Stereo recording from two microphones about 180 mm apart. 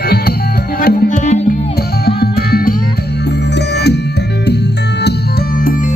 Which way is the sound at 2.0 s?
60° left (ahead or behind).